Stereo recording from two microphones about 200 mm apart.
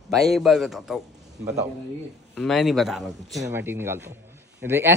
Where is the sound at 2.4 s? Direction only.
Centre (ahead or behind).